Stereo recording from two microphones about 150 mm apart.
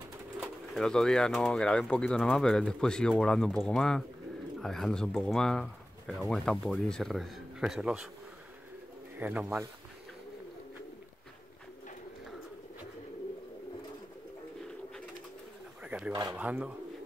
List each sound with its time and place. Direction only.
0.4 s speech: 5° left (ahead or behind)
9.2 s speech: 5° right (ahead or behind)
15.8 s a sound: 5° right (ahead or behind)
16.1 s speech: 25° right (ahead or behind)
16.3 s speech: 10° right (ahead or behind)